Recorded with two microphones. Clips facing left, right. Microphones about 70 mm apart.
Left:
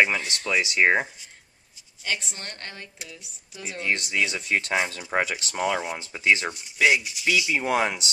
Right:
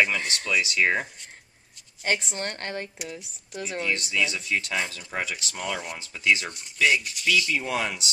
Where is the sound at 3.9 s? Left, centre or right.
Left.